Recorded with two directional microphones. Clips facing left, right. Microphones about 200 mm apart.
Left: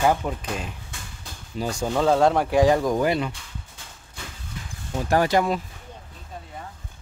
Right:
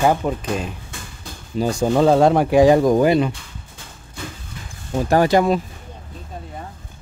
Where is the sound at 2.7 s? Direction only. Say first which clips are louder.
Right 7 dB; 25° right (ahead or behind).